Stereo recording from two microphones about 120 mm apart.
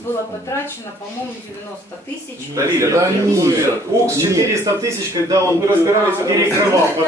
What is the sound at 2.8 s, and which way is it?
A man's voice, 25° right (ahead or behind).